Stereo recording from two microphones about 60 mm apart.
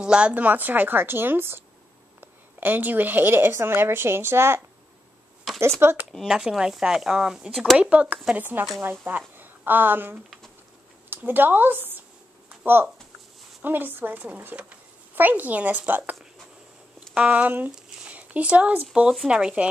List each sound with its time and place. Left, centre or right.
0.0 s a woman's voice: centre; by 4.6 s right
5.8 s a woman's voice: right
6.2 s a woman's voice: centre; by 12.0 s right
12.4 s a sound: right
13.6 s speech: right; by 19.7 s centre